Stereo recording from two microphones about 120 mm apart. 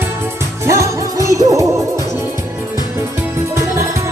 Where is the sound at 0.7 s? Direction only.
25° right (ahead or behind).